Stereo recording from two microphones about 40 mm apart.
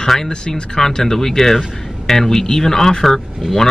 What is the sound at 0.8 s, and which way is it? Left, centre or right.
Speech, centre.